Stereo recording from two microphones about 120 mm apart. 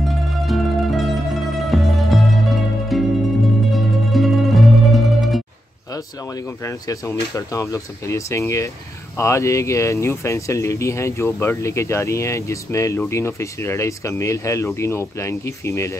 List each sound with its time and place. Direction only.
0.0 s music: centre (ahead or behind)
5.9 s speech: 25° left (ahead or behind)